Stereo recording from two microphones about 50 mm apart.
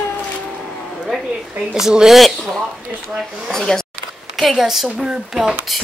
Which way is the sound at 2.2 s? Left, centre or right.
Centre.